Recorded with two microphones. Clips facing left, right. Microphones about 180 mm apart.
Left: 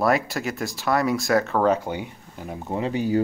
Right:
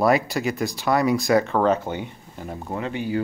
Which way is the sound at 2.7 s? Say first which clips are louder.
Left 3 dB; 35° left (ahead or behind).